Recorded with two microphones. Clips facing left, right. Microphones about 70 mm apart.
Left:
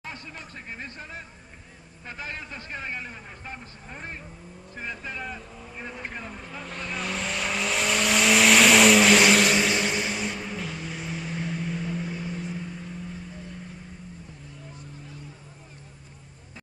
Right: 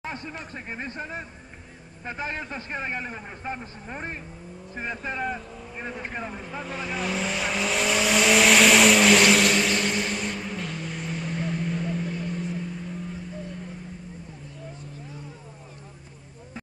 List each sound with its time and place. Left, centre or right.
0.0 s chatter: right
0.7 s a man's voice: right
5.5 s speech: centre
5.8 s vehicle: centre
6.6 s vehicle: centre